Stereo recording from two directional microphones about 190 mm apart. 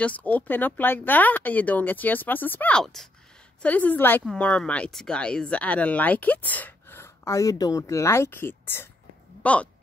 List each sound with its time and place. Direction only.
0.0 s a woman's voice: 10° left (ahead or behind)